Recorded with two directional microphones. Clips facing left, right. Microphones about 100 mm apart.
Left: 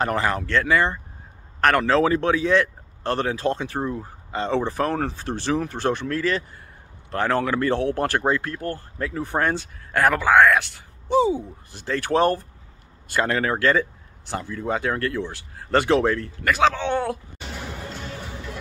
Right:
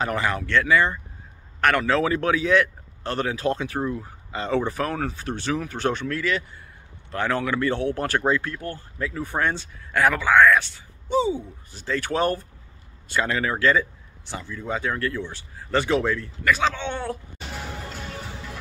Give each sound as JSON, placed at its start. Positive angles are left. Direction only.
{"t": 0.1, "sound": "a man's voice", "side_deg": 40}
{"t": 11.8, "sound": "a man's voice", "side_deg": 40}